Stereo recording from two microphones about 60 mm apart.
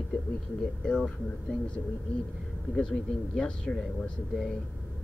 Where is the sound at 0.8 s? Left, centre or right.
Centre.